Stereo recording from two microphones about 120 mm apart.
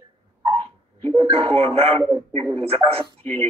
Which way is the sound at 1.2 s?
55° right (ahead or behind).